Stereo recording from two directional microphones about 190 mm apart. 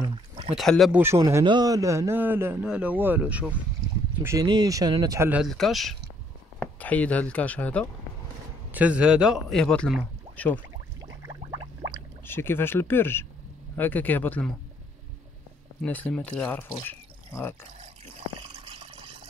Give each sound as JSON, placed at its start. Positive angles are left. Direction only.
{"t": 0.6, "sound": "speech", "side_deg": 0}
{"t": 1.0, "sound": "a man's voice", "side_deg": -15}
{"t": 5.3, "sound": "speech", "side_deg": 0}
{"t": 8.7, "sound": "speech", "side_deg": -5}
{"t": 10.3, "sound": "a sound", "side_deg": 10}
{"t": 11.0, "sound": "a sound", "side_deg": -15}
{"t": 12.3, "sound": "speech", "side_deg": 10}
{"t": 15.8, "sound": "speech", "side_deg": 10}
{"t": 18.6, "sound": "water", "side_deg": -30}